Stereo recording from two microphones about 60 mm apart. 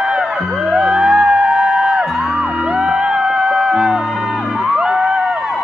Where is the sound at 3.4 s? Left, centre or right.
Centre.